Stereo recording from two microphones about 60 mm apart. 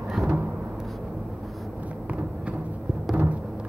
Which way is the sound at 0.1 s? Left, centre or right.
Centre.